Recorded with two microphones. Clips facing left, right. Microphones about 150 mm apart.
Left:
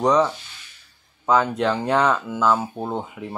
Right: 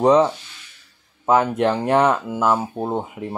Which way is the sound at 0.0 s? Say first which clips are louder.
Right 4 dB; 25° right (ahead or behind).